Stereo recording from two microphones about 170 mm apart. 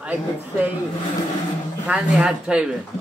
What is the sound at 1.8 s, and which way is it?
Speech, 5° right (ahead or behind).